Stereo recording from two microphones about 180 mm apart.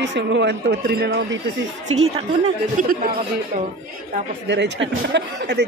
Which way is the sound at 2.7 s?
55° right (ahead or behind).